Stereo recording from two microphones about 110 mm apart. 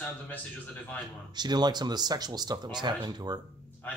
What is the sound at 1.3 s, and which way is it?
Speech, 40° right (ahead or behind).